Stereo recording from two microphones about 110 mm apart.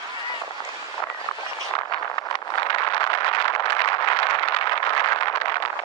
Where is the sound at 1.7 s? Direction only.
35° left (ahead or behind).